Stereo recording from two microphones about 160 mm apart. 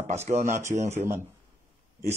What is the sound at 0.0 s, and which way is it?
Speech, 45° right (ahead or behind).